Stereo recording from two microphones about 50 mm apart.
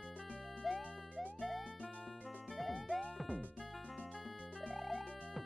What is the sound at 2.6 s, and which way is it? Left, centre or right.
Music, centre.